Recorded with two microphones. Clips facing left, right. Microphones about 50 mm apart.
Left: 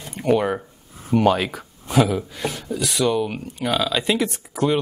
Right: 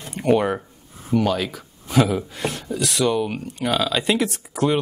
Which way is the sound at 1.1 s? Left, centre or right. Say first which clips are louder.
Left 3 dB; left.